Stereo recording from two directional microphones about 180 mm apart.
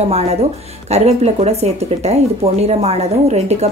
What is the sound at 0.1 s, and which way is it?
A woman's voice, 35° right (ahead or behind).